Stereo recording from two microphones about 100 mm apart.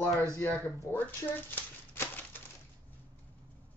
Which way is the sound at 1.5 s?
20° left (ahead or behind).